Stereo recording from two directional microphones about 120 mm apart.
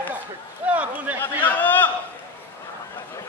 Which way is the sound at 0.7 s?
10° right (ahead or behind).